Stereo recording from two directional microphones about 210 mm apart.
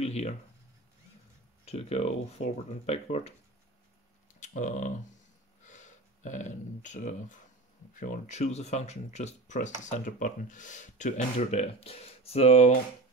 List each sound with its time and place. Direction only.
0.0 s a sound: 30° left (ahead or behind)
1.7 s speech: 30° left (ahead or behind)
4.4 s speech: 35° left (ahead or behind)